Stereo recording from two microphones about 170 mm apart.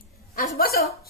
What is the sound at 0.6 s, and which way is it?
Speech, 60° left (ahead or behind).